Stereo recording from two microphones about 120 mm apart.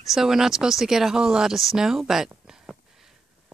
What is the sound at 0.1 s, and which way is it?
Speech, 5° right (ahead or behind).